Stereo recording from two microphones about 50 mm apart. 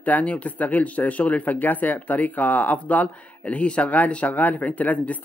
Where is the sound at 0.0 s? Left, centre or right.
Left.